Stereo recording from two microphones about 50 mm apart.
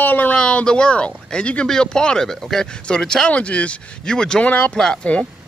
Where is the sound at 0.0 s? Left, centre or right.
Left.